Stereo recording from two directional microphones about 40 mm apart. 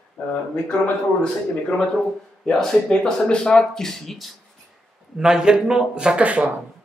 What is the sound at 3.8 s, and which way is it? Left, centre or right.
Speech, centre.